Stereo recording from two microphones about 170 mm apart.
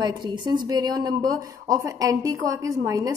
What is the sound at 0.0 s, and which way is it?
A woman's voice, 25° right (ahead or behind).